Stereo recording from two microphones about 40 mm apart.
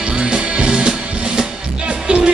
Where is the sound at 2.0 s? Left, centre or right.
Right.